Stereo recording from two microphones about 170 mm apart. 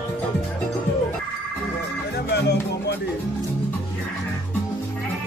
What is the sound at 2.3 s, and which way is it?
Music, 75° left (ahead or behind).